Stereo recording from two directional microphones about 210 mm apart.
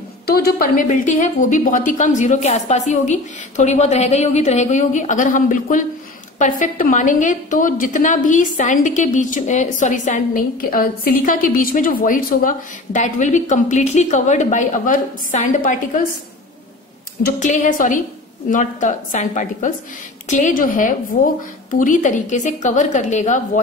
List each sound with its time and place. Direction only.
0.3 s a woman's voice: 45° left (ahead or behind)
17.2 s a woman's voice: 35° left (ahead or behind)